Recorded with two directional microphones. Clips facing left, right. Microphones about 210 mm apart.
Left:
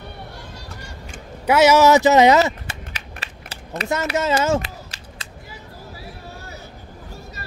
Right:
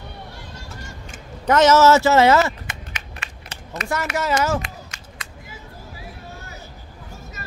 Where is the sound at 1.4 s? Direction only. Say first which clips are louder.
Even; 10° left (ahead or behind).